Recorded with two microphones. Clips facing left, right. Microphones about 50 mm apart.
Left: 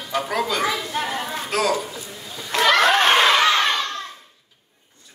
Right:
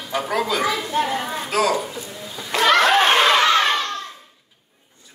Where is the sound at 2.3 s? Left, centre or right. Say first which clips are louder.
Right 1 dB; centre.